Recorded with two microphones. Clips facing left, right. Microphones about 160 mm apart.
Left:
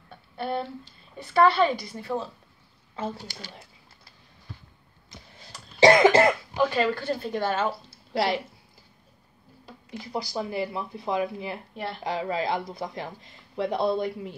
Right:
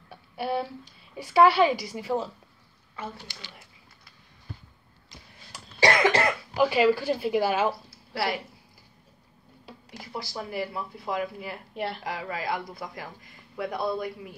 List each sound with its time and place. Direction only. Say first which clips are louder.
0.1 s a sound: right 1 dB; 10° right (ahead or behind)
1.1 s speech: right 1 dB; 10° right (ahead or behind)
3.2 s speech: left 4 dB; 40° left (ahead or behind)
5.8 s cough: left 6 dB; 25° left (ahead or behind)
6.5 s speech: right 3 dB; 10° right (ahead or behind)
8.1 s speech: left 4 dB; 20° left (ahead or behind)
9.8 s speech: left 5 dB; 20° left (ahead or behind)
11.7 s a woman's voice: right 2 dB; 5° right (ahead or behind)
12.0 s speech: left 5 dB; 25° left (ahead or behind)